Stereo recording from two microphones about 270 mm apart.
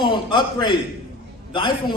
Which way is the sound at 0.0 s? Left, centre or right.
Centre.